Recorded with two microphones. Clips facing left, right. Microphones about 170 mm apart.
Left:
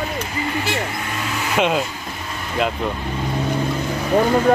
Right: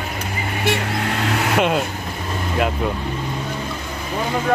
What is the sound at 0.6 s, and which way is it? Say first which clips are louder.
Vehicle: right 3 dB; 60° right (ahead or behind).